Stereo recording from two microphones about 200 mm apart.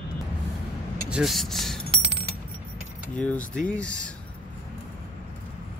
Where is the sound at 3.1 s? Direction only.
5° left (ahead or behind).